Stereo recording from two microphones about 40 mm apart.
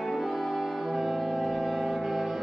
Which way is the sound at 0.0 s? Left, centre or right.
Centre.